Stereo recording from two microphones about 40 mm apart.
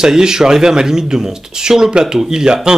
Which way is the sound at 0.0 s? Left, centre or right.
Centre.